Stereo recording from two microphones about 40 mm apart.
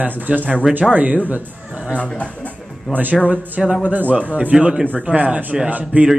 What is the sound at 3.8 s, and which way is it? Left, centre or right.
Speech, right.